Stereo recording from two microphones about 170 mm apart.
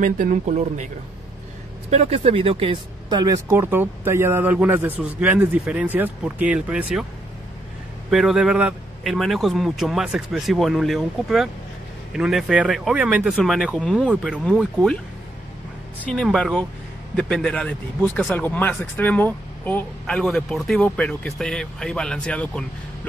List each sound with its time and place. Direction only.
0.0 s speech: 50° right (ahead or behind)
1.9 s speech: 40° right (ahead or behind); by 7.1 s 5° right (ahead or behind)
8.1 s speech: centre (ahead or behind)
16.1 s speech: 5° left (ahead or behind)